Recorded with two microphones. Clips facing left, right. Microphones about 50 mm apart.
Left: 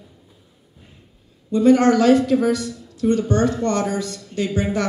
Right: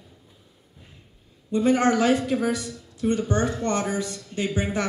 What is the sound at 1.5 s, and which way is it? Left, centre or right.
A man's voice, centre.